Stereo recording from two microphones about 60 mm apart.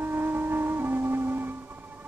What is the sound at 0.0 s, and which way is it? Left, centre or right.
Music, right.